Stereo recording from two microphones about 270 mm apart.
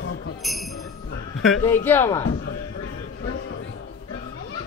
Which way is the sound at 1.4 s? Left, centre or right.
Centre.